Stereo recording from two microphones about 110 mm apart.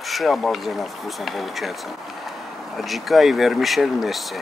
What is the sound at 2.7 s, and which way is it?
Speech, centre (ahead or behind).